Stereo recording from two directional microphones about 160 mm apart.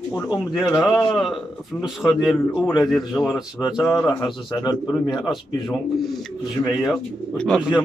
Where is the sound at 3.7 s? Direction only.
25° left (ahead or behind).